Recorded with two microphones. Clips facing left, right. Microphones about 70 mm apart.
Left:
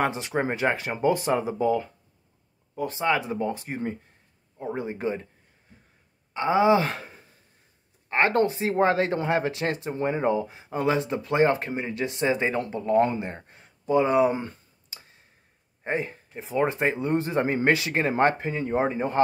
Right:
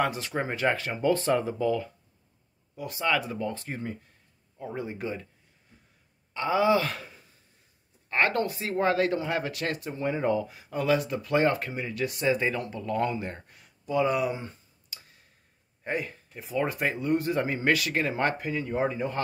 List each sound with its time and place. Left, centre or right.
0.0 s speech: left
2.7 s speech: left
6.3 s speech: left
14.3 s speech: left
14.9 s a sound: left
15.8 s speech: left